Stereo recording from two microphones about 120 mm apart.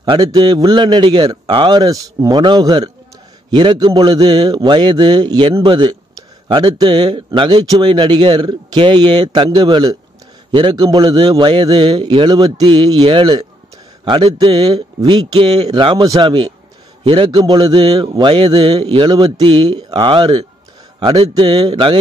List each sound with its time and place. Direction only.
0.0 s a man's voice: 40° right (ahead or behind)
15.0 s a man's voice: 40° right (ahead or behind)